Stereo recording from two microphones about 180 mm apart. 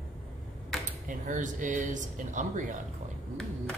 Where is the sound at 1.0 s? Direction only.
45° right (ahead or behind).